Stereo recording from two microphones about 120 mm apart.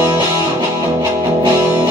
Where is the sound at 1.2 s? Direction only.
30° right (ahead or behind).